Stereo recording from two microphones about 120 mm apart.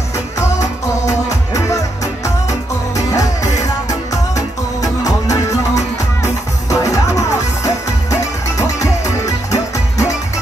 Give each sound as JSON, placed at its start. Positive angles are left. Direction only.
{"t": 1.0, "sound": "music", "side_deg": 25}
{"t": 3.1, "sound": "music", "side_deg": 25}